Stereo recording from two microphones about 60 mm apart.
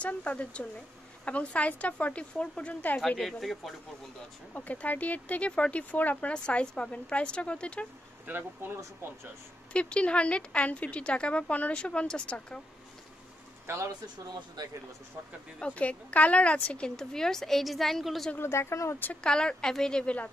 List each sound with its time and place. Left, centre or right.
0.0 s speech: left
3.2 s speech: centre
4.6 s a woman's voice: left
8.3 s speech: right
9.7 s speech: centre
13.7 s speech: right
15.6 s a woman's voice: left; by 18.3 s centre
18.4 s speech: left
19.2 s a woman's voice: centre